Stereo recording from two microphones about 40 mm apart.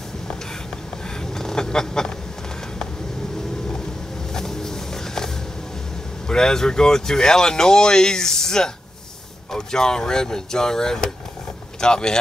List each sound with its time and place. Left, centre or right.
1.2 s duck: centre
4.3 s a sound: centre
6.2 s speech: centre